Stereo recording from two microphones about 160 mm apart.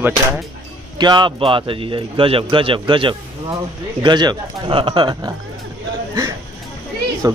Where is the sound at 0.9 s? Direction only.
25° right (ahead or behind).